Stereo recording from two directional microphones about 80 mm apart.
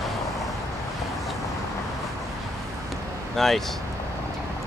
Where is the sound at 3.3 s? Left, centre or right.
Centre.